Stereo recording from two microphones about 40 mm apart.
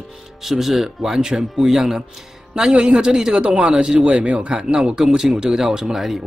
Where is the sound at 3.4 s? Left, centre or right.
Right; by 6.2 s centre.